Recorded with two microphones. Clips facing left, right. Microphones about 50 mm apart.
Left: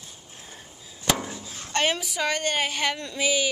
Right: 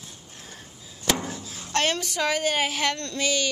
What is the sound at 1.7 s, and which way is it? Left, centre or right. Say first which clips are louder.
A woman's voice: even; centre.